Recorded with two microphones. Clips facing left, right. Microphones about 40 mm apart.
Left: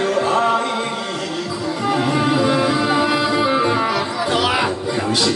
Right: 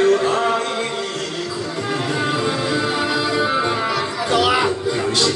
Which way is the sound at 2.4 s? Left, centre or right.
Left.